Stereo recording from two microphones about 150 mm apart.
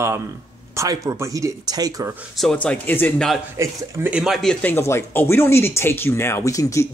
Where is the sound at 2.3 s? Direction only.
5° left (ahead or behind).